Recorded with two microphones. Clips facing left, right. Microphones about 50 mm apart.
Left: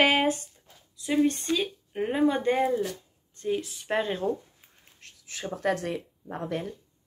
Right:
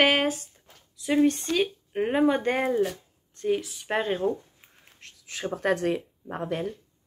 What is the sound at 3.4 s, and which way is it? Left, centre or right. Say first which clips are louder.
Speech: right 3 dB; right.